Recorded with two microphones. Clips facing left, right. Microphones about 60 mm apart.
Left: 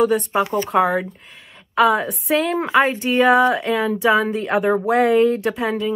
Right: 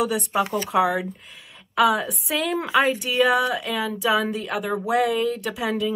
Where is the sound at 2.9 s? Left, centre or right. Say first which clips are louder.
Left 3 dB; left.